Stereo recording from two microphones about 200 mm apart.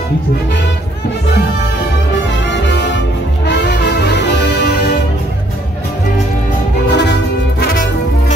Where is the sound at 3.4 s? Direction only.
55° left (ahead or behind).